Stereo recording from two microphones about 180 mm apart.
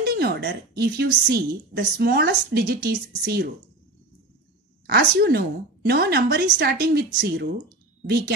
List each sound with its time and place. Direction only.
0.0 s a woman's voice: 60° right (ahead or behind)
4.8 s a woman's voice: 60° right (ahead or behind)